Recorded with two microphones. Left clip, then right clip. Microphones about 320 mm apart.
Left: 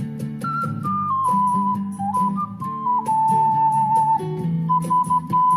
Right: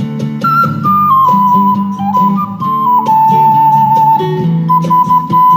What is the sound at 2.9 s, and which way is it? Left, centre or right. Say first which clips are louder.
Flute: right 9 dB; centre.